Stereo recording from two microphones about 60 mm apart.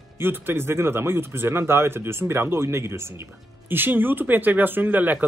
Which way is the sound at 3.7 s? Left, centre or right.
Right.